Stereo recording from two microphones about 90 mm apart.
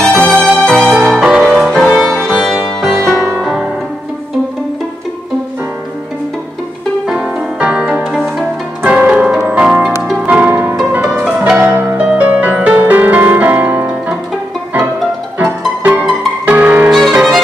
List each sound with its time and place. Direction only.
0.0 s music: 10° left (ahead or behind); by 1.7 s 5° right (ahead or behind)
2.0 s music: 5° left (ahead or behind); by 3.6 s 10° right (ahead or behind)
7.1 s music: 5° right (ahead or behind); by 13.8 s 20° right (ahead or behind)
15.3 s music: 20° right (ahead or behind)
16.9 s violin: 5° right (ahead or behind)